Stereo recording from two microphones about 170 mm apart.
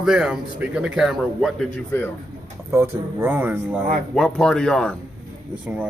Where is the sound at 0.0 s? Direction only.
5° right (ahead or behind).